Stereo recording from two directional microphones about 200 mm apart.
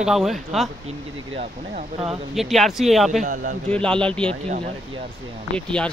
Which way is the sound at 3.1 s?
40° right (ahead or behind).